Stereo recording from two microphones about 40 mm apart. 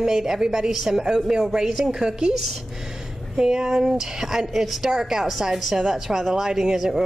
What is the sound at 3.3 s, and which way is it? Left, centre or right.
A woman's voice, centre.